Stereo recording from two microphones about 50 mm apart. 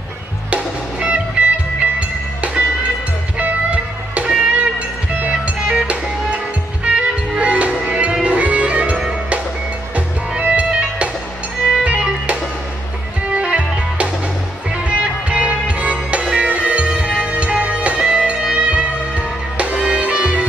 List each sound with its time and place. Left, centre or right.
0.5 s music: right
9.9 s music: right
13.3 s music: right